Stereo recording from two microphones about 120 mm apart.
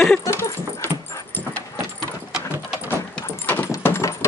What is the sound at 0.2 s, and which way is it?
Dog, 20° left (ahead or behind).